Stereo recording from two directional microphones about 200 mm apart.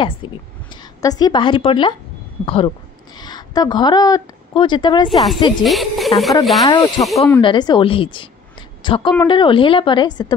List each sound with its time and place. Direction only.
0.0 s a woman's voice: 25° left (ahead or behind)
5.6 s speech: centre (ahead or behind)
6.6 s a woman's voice: 20° left (ahead or behind)
7.4 s a woman's voice: 20° left (ahead or behind)